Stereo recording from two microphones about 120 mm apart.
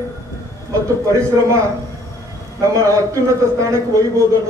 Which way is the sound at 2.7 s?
30° right (ahead or behind).